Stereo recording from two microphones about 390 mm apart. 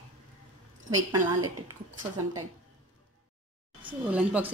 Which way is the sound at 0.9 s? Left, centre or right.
Right.